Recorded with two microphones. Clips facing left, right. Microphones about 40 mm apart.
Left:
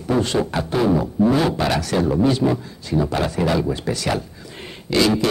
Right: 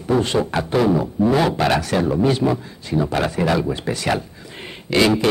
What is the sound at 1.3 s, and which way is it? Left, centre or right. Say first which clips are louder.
Speech: right 2 dB; right.